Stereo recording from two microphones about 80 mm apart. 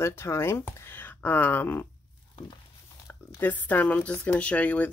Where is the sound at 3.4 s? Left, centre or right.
Left.